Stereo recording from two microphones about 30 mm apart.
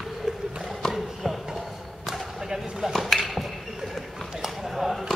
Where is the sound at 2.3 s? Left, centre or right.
Centre.